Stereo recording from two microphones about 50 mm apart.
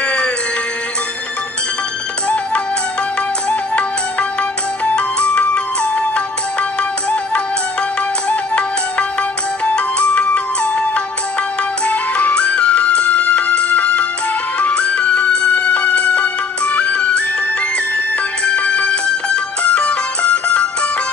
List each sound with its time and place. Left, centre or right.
0.0 s music: left
2.2 s music: left